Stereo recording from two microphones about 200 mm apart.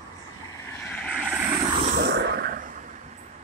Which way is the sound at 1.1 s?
5° right (ahead or behind).